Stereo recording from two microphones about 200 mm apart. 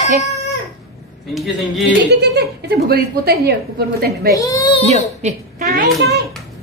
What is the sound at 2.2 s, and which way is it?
A woman's voice, 55° right (ahead or behind).